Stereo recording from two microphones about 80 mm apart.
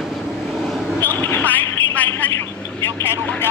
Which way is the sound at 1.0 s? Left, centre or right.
Left.